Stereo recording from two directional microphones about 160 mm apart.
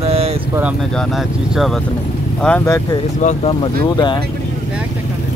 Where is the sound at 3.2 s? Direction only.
50° left (ahead or behind).